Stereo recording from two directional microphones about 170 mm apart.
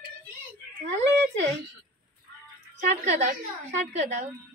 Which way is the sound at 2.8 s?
45° right (ahead or behind).